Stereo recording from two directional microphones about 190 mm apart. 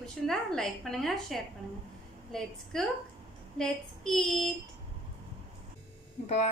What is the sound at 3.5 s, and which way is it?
Speech, 5° left (ahead or behind).